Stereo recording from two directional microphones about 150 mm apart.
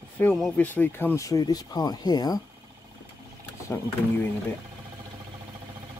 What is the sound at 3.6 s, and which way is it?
Speech, 20° left (ahead or behind).